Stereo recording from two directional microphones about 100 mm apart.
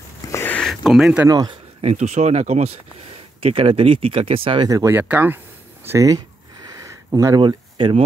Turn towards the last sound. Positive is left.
turn(degrees=-55)  # may be behind; listen again after turning